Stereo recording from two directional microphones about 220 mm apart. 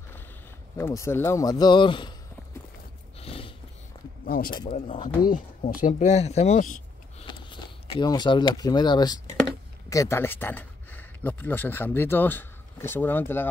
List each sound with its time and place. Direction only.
0.7 s speech: 15° left (ahead or behind)
3.2 s a sound: 25° left (ahead or behind)
4.5 s speech: 20° left (ahead or behind)
5.2 s speech: 40° left (ahead or behind)
7.2 s speech: 20° left (ahead or behind)